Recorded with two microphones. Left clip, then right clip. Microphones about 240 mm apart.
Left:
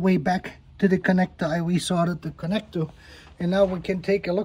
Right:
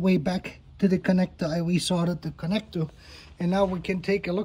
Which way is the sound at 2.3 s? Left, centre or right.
Centre.